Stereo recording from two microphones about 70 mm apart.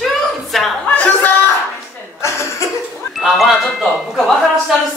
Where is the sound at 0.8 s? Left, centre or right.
Left.